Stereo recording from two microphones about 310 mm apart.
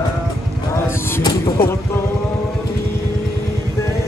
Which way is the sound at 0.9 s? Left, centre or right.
Centre.